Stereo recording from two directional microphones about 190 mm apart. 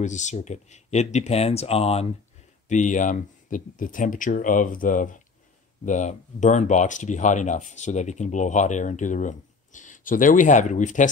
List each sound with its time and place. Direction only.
0.0 s speech: 40° left (ahead or behind)